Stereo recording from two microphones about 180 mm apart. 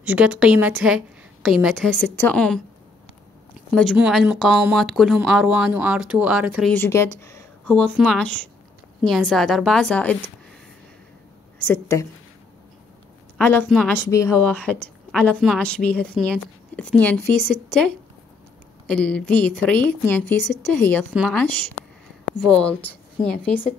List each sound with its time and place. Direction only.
0.0 s a woman's voice: 5° right (ahead or behind)
3.7 s a woman's voice: 5° left (ahead or behind)
6.7 s a woman's voice: 15° left (ahead or behind)
11.6 s speech: 15° left (ahead or behind)
13.4 s a woman's voice: 10° left (ahead or behind)
13.7 s a woman's voice: centre (ahead or behind)
14.0 s speech: 15° left (ahead or behind)
14.3 s a woman's voice: 5° left (ahead or behind)